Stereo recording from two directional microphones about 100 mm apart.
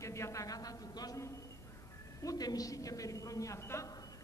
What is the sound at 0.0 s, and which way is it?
A man's voice, 30° left (ahead or behind).